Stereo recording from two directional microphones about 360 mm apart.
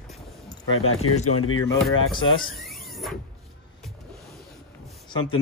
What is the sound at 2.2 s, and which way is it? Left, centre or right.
Speech, centre.